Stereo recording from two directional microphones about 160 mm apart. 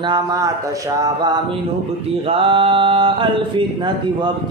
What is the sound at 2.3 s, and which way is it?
A man's voice, 35° right (ahead or behind).